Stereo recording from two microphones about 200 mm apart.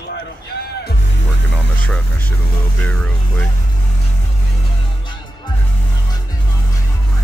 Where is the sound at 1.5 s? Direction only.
5° left (ahead or behind).